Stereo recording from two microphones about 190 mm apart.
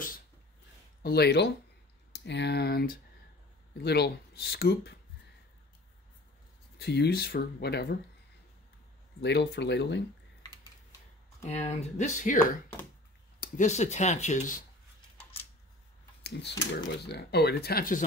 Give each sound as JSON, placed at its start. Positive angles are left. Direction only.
{"t": 1.0, "sound": "speech", "side_deg": 60}
{"t": 6.8, "sound": "speech", "side_deg": 60}
{"t": 9.2, "sound": "speech", "side_deg": 60}
{"t": 11.4, "sound": "speech", "side_deg": 35}
{"t": 16.2, "sound": "a sound", "side_deg": 65}
{"t": 16.7, "sound": "speech", "side_deg": 60}